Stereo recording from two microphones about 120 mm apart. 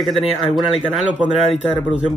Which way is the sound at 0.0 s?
Centre (ahead or behind).